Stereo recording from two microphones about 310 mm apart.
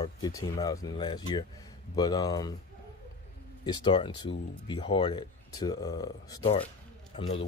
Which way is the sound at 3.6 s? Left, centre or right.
Centre.